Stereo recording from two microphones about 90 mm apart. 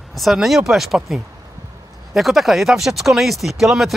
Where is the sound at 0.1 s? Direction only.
Centre (ahead or behind).